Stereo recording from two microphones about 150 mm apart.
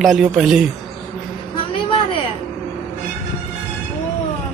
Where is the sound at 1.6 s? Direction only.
35° left (ahead or behind).